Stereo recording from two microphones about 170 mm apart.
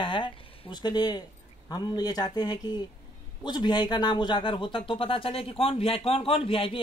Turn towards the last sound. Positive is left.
turn(degrees=35)  # may be behind; listen again after turning